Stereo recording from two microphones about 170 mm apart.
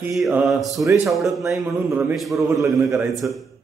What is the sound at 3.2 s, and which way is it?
Speech, centre (ahead or behind).